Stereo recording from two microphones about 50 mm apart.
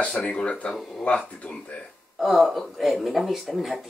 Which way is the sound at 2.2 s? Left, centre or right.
Centre.